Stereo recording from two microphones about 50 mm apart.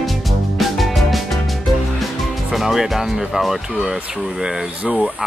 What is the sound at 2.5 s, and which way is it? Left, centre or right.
Speech, centre.